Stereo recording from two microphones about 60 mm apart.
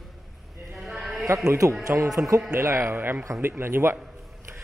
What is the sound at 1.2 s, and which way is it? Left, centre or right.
Speech, right.